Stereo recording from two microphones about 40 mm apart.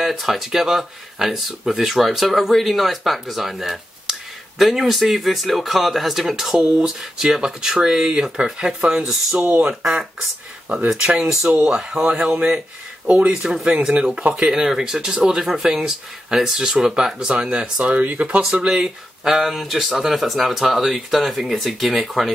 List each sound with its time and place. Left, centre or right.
0.1 s speech: centre
6.6 s speech: right
7.2 s speech: centre
9.4 s speech: right
9.7 s speech: centre
11.4 s speech: right
11.7 s speech: centre
13.0 s speech: right
13.3 s speech: centre; by 18.4 s right
18.7 s speech: centre